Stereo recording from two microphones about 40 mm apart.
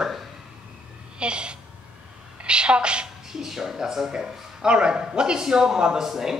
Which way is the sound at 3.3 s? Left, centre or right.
Centre.